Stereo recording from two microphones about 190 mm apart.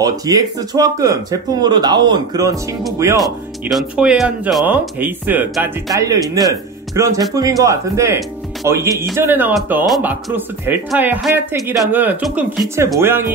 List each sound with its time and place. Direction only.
0.0 s speech: 20° right (ahead or behind)
3.6 s speech: 5° right (ahead or behind)